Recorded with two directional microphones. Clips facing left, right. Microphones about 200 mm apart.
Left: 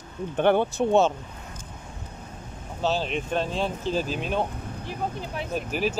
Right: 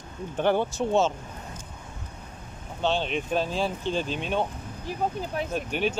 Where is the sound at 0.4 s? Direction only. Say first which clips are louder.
Left 3 dB; 60° left (ahead or behind).